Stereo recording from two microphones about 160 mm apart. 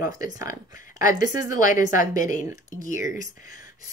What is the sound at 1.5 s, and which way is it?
Speech, 55° left (ahead or behind).